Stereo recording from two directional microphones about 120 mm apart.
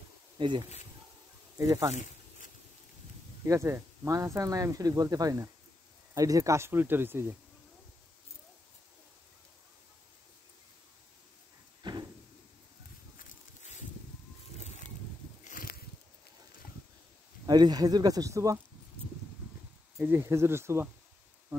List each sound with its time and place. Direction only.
0.4 s speech: 40° right (ahead or behind)
1.6 s speech: 25° right (ahead or behind)
3.4 s speech: 20° right (ahead or behind)
11.8 s a sound: 35° right (ahead or behind)
17.5 s speech: 35° right (ahead or behind)
20.0 s speech: 20° right (ahead or behind)